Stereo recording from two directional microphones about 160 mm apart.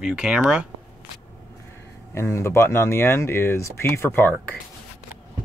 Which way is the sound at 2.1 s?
15° left (ahead or behind).